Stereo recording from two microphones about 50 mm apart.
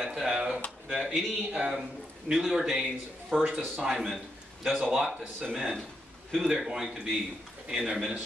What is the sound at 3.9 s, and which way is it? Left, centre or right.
Speech, centre.